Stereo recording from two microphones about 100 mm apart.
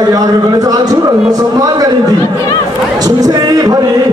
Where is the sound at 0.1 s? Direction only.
40° right (ahead or behind).